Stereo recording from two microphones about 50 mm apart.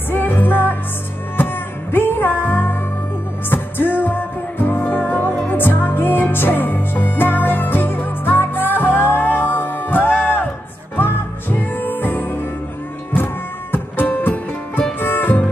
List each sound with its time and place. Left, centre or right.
0.1 s music: left